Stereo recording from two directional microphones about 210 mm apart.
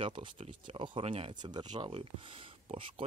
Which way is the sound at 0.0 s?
25° right (ahead or behind).